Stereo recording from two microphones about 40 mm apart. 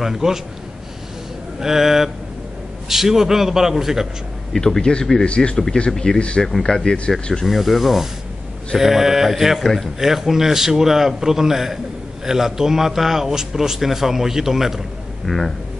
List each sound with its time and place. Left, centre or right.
0.0 s a man's voice: centre
1.6 s a man's voice: centre
4.6 s speech: centre
5.2 s speech: left
7.4 s a man's voice: centre
15.2 s speech: centre